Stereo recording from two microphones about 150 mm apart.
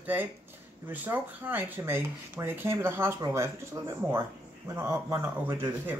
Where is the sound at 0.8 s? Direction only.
10° right (ahead or behind).